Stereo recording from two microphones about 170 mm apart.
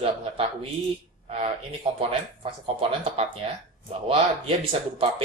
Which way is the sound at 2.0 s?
30° right (ahead or behind).